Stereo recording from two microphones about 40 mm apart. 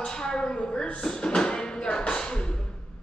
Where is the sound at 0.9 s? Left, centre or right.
Left.